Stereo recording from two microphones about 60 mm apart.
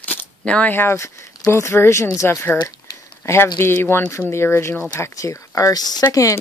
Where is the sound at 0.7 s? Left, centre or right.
Left.